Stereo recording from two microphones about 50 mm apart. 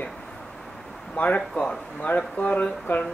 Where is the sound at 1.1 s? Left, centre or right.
Left.